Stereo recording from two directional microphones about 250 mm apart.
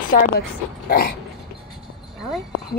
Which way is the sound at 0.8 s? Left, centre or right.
Left.